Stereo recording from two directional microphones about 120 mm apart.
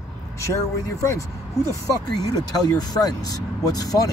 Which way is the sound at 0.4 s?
25° left (ahead or behind).